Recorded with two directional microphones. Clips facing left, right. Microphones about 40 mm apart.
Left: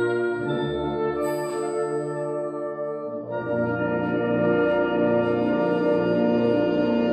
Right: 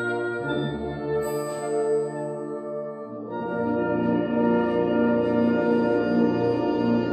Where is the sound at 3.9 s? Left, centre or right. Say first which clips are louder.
Even; left.